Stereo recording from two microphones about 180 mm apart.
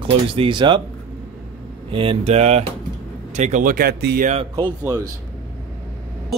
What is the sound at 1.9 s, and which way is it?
Speech, 30° right (ahead or behind).